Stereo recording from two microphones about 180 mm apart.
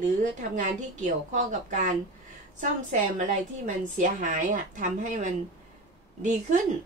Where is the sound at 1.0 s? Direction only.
45° right (ahead or behind).